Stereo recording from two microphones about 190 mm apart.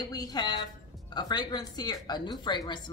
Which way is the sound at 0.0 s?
20° left (ahead or behind).